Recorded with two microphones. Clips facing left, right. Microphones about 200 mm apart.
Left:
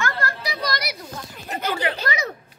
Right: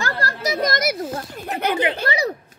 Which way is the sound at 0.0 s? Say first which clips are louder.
Right 2 dB; 40° right (ahead or behind).